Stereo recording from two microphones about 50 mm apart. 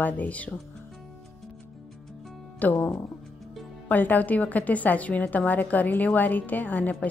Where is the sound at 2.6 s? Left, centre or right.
Left.